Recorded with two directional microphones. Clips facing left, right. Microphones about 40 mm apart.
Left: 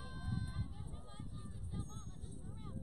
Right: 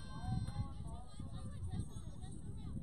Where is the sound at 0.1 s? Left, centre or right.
Centre.